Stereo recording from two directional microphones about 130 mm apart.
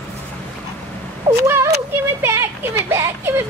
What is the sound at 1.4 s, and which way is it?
Speech, 20° right (ahead or behind).